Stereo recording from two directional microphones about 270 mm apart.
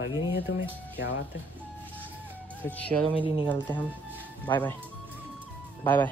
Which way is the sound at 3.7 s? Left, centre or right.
Centre.